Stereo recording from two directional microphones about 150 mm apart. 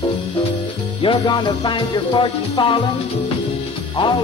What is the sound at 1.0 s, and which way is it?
Music, 35° left (ahead or behind).